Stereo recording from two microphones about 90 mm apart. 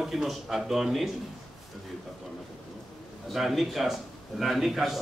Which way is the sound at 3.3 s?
Centre (ahead or behind).